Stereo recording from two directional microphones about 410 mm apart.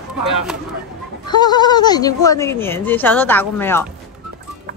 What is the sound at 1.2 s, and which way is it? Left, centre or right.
Speech, centre.